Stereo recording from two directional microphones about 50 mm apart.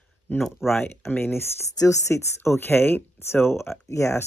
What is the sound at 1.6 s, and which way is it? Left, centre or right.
Speech, left.